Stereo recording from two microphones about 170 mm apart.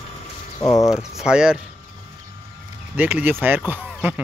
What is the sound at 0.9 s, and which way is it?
Speech, centre (ahead or behind).